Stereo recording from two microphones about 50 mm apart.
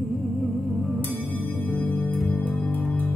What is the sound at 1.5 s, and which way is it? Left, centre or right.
Music, left.